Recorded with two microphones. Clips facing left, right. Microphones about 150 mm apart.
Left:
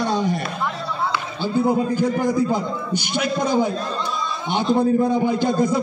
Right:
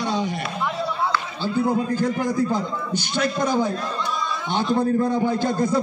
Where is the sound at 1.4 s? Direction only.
15° left (ahead or behind).